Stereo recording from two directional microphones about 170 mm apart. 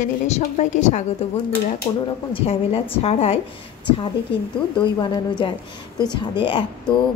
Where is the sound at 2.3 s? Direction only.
35° left (ahead or behind).